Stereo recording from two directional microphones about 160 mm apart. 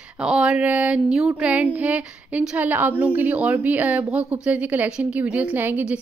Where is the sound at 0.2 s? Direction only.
5° right (ahead or behind).